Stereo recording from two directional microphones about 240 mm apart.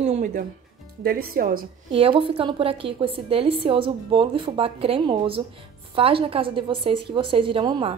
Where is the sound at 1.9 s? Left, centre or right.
Right.